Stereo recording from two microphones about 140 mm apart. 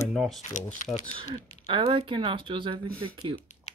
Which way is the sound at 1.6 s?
35° right (ahead or behind).